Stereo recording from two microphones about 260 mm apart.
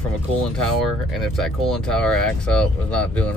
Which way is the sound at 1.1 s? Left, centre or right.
Centre.